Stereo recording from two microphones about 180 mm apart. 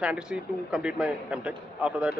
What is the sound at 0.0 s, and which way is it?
A man's voice, 5° right (ahead or behind).